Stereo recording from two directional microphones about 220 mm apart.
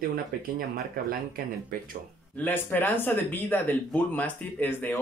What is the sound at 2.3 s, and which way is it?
Speech, 10° left (ahead or behind).